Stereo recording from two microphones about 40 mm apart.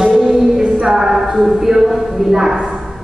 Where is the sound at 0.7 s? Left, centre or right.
Centre.